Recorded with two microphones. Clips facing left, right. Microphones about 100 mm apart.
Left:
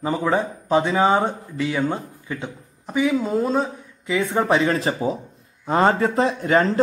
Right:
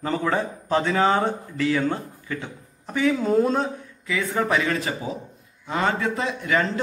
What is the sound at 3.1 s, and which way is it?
Speech, centre (ahead or behind).